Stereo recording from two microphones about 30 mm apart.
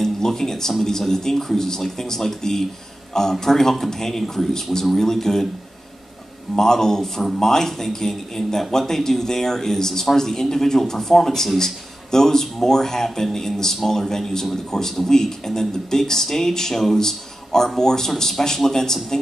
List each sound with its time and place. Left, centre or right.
0.0 s speech: centre
6.5 s speech: centre